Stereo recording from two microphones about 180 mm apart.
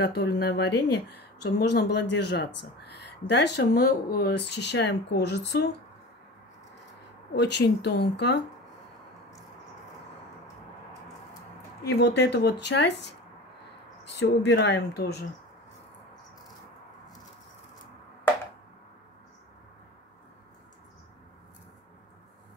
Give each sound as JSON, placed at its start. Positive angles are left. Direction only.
{"t": 0.0, "sound": "speech", "side_deg": 70}
{"t": 7.3, "sound": "speech", "side_deg": 70}
{"t": 11.8, "sound": "speech", "side_deg": 70}
{"t": 14.2, "sound": "speech", "side_deg": 70}